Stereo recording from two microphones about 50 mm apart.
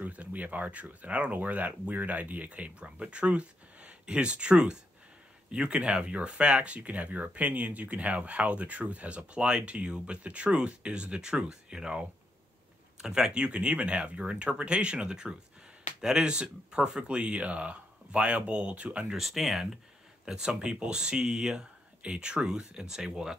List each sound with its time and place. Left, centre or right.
0.0 s speech: right
19.0 s speech: centre